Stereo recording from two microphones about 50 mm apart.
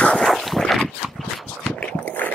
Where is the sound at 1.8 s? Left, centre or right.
Left.